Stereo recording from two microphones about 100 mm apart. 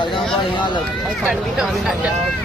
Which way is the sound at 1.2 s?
5° right (ahead or behind).